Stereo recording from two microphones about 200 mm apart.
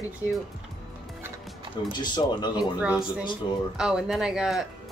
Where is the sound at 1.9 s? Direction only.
20° left (ahead or behind).